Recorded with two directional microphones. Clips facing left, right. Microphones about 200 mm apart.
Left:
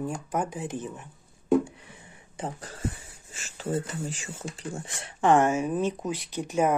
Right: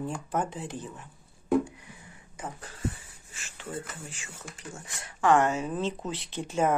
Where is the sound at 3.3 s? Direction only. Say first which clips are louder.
Left 9 dB; 40° left (ahead or behind).